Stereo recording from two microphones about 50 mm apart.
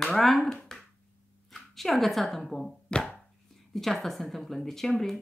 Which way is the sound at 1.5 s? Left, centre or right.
Centre.